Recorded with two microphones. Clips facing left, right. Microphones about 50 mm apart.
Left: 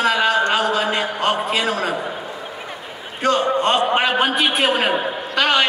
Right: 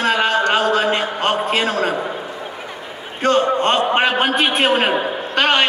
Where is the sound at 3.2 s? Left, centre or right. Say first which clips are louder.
Right 2 dB; right.